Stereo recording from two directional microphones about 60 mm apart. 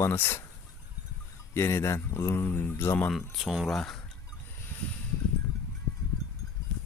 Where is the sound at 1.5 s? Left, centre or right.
Left.